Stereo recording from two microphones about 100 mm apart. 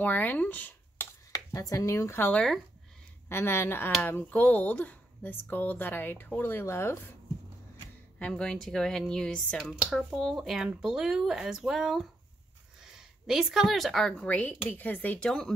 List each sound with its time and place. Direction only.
0.0 s speech: 15° left (ahead or behind)
1.3 s speech: 35° left (ahead or behind)
8.2 s a woman's voice: 10° left (ahead or behind)